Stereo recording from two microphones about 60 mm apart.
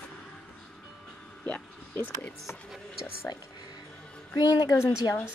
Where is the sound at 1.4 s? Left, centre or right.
Left.